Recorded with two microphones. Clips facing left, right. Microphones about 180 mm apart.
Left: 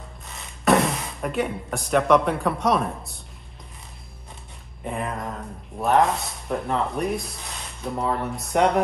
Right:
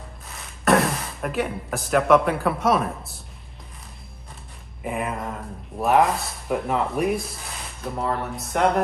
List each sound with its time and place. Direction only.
0.3 s speech: centre (ahead or behind)
4.8 s speech: 5° right (ahead or behind)